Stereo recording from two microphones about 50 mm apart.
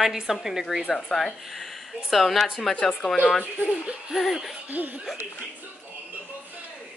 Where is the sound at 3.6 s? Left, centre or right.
Right.